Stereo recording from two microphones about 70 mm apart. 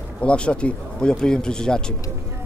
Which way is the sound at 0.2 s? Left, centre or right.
Centre.